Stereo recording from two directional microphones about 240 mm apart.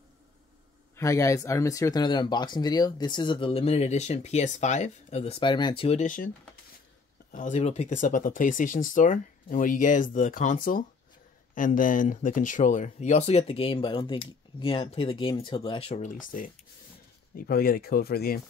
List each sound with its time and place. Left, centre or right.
0.9 s speech: centre; by 6.3 s left
7.3 s speech: left